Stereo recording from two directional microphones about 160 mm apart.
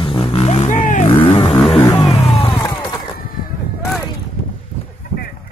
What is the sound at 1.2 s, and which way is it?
Vehicle, 40° left (ahead or behind).